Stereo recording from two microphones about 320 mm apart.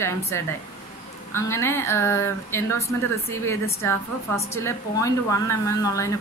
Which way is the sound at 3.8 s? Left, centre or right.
Centre.